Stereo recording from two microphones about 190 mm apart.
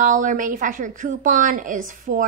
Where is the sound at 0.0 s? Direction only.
45° right (ahead or behind).